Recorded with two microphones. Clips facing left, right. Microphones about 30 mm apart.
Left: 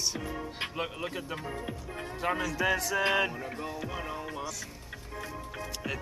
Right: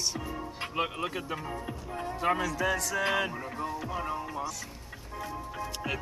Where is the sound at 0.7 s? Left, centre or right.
Centre.